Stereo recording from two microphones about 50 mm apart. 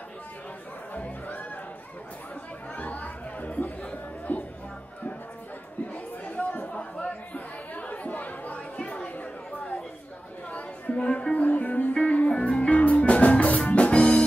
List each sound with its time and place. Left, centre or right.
0.9 s music: left
2.7 s chatter: left
6.2 s chatter: left
10.5 s chatter: left
11.3 s music: left